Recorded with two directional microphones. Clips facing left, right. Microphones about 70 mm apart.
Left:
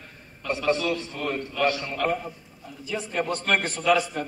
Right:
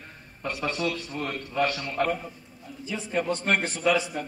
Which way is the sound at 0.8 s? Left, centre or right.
Left.